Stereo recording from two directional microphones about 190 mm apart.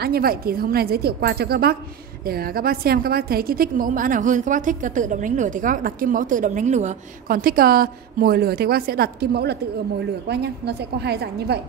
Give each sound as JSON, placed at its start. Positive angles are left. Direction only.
{"t": 0.0, "sound": "a woman's voice", "side_deg": -55}